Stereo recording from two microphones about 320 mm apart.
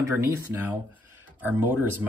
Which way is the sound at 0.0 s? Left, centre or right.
Centre.